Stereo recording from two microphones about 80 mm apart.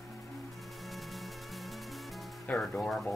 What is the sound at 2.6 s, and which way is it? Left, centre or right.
Speech, centre.